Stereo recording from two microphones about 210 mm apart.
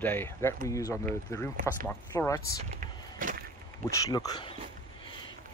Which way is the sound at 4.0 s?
15° left (ahead or behind).